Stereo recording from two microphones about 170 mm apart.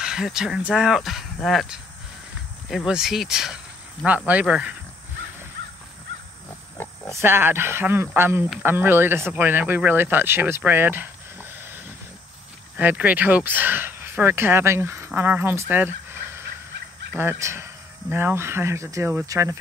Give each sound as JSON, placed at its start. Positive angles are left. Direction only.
{"t": 0.0, "sound": "speech", "side_deg": -5}
{"t": 7.2, "sound": "speech", "side_deg": -15}
{"t": 12.7, "sound": "speech", "side_deg": -10}
{"t": 15.7, "sound": "a sound", "side_deg": -10}
{"t": 17.1, "sound": "speech", "side_deg": -10}